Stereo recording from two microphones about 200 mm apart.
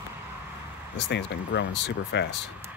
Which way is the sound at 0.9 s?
60° left (ahead or behind).